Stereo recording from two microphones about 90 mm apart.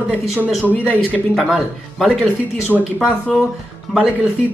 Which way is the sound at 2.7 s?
10° right (ahead or behind).